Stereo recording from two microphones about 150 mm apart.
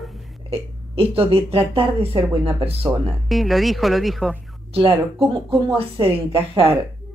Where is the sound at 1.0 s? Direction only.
40° right (ahead or behind).